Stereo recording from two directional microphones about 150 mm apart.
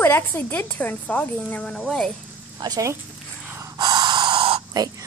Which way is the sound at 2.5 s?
25° right (ahead or behind).